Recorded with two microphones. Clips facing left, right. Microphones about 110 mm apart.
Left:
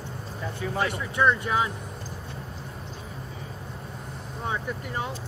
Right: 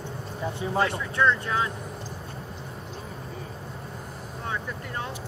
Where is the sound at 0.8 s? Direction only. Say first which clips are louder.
Left 3 dB; 15° left (ahead or behind).